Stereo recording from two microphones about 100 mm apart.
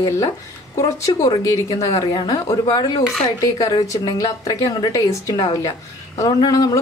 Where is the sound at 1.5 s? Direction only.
35° left (ahead or behind).